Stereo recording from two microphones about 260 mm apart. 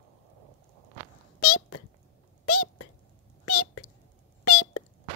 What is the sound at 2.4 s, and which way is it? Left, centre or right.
Whispering, left.